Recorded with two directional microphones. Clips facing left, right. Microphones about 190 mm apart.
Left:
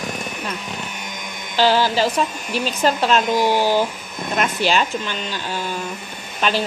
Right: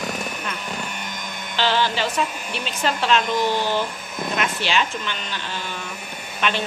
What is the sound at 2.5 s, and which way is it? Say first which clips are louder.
Speech: left 7 dB; 40° left (ahead or behind).